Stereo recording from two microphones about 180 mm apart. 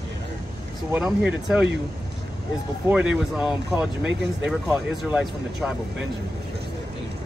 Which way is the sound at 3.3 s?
5° right (ahead or behind).